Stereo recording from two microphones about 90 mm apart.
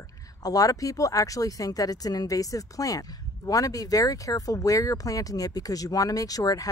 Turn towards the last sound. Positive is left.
turn(degrees=40)  # may be behind; listen again after turning